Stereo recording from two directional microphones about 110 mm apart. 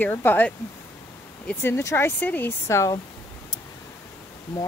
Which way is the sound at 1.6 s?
25° left (ahead or behind).